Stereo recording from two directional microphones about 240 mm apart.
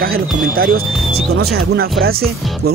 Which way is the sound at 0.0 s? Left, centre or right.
Right.